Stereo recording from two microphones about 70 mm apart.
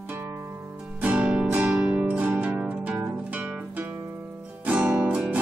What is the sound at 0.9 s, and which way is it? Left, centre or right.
Music, right.